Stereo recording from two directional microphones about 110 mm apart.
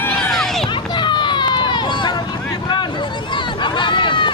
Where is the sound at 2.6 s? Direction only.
40° left (ahead or behind).